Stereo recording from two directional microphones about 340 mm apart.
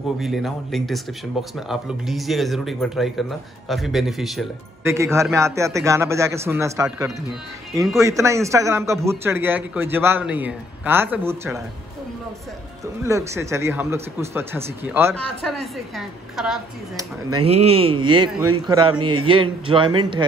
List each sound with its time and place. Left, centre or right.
0.2 s speech: centre
13.0 s speech: centre
17.3 s speech: centre